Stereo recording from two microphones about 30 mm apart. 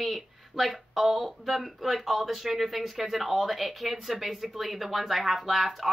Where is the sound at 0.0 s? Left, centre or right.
Centre.